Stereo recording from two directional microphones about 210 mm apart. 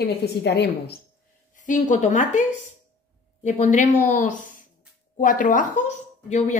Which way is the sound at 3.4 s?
35° left (ahead or behind).